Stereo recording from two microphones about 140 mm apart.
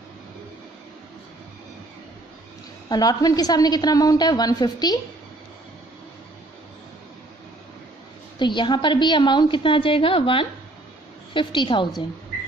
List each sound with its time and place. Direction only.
2.9 s a woman's voice: 25° left (ahead or behind)
8.4 s a woman's voice: 35° left (ahead or behind)